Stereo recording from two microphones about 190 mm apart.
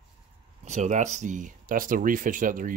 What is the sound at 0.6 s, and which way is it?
Speech, 40° right (ahead or behind).